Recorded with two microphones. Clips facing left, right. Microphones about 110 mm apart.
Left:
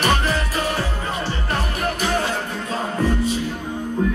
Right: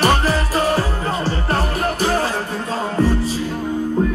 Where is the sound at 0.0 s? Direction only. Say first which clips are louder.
Right 3 dB; 35° right (ahead or behind).